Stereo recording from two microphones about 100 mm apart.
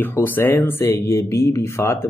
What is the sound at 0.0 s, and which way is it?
A man's voice, 20° left (ahead or behind).